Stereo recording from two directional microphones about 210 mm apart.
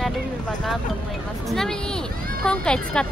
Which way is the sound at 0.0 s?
Centre (ahead or behind).